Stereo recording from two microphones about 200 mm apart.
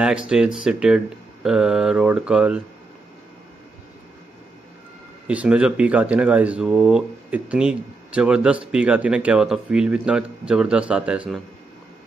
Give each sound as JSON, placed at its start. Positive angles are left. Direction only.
{"t": 0.0, "sound": "speech", "side_deg": -5}
{"t": 5.2, "sound": "speech", "side_deg": -5}